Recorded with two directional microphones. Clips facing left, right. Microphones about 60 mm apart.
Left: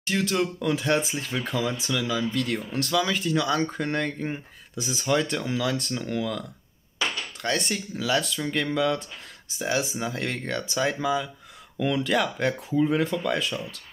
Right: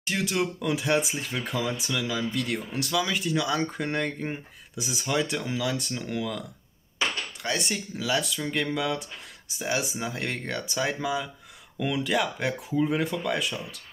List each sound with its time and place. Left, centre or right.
0.0 s speech: centre
2.0 s speech: right
2.4 s speech: centre
7.4 s speech: centre